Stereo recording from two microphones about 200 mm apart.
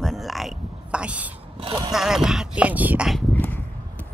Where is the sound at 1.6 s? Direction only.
20° right (ahead or behind).